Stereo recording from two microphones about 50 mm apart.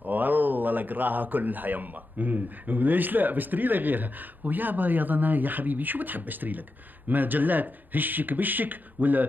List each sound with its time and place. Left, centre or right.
0.0 s speech: right